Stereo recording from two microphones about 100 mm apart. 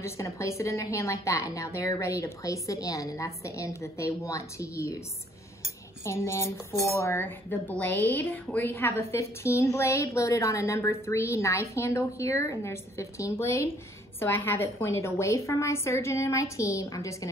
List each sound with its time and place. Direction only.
0.0 s a woman's voice: 30° left (ahead or behind)
6.0 s a woman's voice: 30° left (ahead or behind)